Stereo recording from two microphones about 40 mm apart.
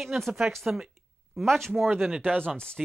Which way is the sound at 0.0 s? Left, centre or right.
Centre.